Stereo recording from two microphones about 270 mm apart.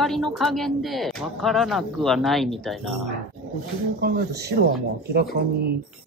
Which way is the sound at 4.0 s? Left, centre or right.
Right.